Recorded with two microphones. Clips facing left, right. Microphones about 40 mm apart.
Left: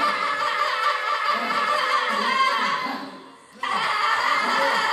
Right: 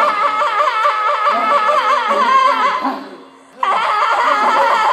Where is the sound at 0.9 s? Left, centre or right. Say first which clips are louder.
Right 9 dB; right.